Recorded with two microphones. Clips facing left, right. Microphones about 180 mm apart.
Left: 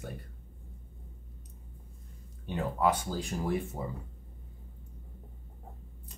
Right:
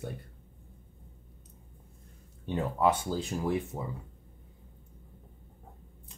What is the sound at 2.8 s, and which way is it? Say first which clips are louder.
Speech: right 2 dB; 20° right (ahead or behind).